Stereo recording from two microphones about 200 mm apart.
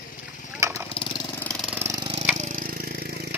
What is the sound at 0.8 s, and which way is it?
Vehicle, 25° left (ahead or behind).